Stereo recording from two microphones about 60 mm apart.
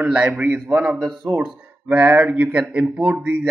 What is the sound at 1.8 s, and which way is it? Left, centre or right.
Speech, right.